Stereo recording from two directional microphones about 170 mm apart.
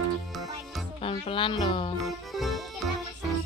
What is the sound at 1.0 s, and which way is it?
Speech, 30° left (ahead or behind).